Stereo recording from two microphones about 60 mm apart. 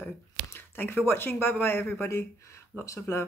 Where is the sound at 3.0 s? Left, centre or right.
Left.